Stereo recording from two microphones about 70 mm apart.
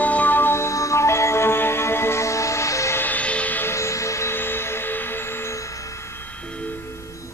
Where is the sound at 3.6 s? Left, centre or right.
Left.